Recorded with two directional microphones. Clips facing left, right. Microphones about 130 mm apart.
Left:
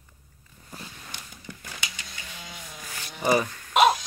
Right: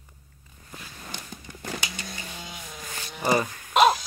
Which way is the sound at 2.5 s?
Centre (ahead or behind).